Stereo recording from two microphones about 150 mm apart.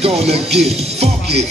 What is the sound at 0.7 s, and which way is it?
Speech, 45° right (ahead or behind).